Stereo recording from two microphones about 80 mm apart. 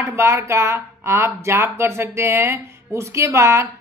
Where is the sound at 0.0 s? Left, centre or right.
Right.